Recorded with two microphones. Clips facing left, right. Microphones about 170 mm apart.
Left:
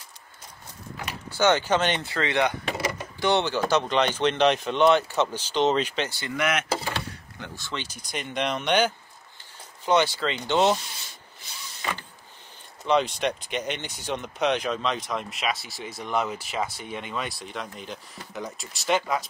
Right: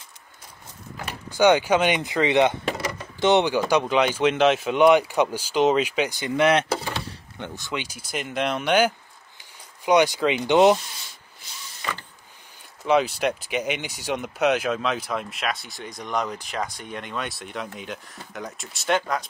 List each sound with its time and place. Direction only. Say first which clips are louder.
1.3 s speech: right 4 dB; 15° right (ahead or behind)
2.8 s a sound: left 1 dB; 5° left (ahead or behind)
3.2 s speech: right 5 dB; 20° right (ahead or behind)
12.8 s speech: right 2 dB; 5° right (ahead or behind)